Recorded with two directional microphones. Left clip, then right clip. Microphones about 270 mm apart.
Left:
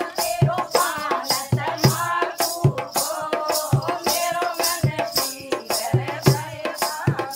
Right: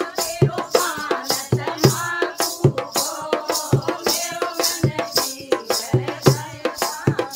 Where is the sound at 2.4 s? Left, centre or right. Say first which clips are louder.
Right 2 dB; centre.